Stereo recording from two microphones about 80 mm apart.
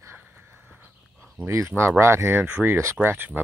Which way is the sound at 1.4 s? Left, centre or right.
Right.